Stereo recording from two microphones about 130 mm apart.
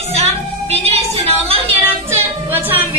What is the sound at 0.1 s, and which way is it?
Music, 50° right (ahead or behind).